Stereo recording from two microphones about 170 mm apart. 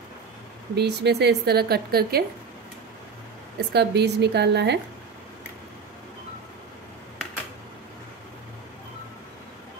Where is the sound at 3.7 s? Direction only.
80° right.